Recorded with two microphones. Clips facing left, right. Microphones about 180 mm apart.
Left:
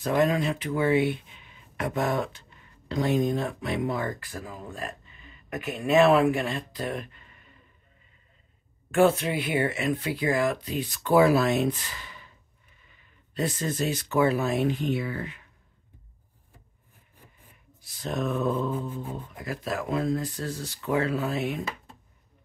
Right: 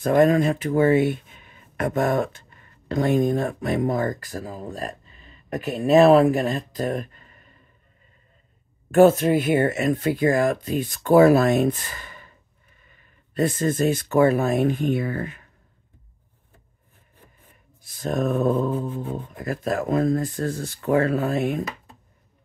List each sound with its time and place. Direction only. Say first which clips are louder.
0.0 s speech: right 7 dB; 50° right (ahead or behind)
8.9 s speech: right 7 dB; 45° right (ahead or behind)
17.8 s speech: right 6 dB; 50° right (ahead or behind)